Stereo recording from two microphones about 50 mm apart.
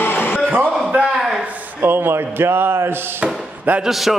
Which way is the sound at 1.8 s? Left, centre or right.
Right.